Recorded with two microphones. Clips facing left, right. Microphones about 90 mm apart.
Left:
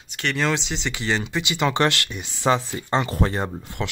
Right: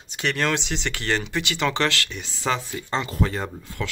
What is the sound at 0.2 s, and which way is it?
Speech, 5° right (ahead or behind).